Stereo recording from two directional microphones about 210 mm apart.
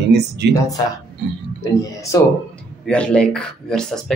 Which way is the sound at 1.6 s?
15° left (ahead or behind).